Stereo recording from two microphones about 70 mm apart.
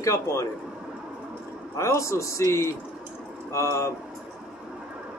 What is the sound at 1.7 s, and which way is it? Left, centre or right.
Speech, left.